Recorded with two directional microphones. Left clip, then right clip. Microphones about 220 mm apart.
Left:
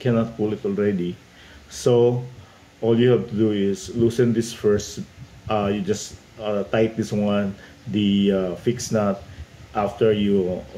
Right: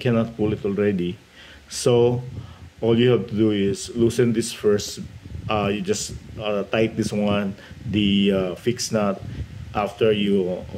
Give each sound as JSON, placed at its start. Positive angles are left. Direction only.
{"t": 0.0, "sound": "speech", "side_deg": -35}